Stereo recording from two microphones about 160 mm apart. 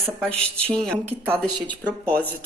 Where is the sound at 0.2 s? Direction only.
5° left (ahead or behind).